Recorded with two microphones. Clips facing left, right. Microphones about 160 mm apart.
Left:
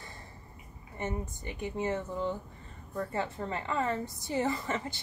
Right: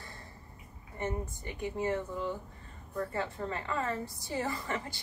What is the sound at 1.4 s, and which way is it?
Speech, 20° left (ahead or behind).